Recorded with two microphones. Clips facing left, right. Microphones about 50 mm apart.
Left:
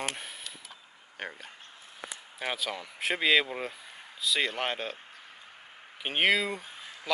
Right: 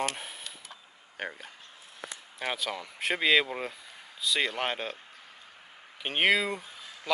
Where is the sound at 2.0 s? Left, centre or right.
Centre.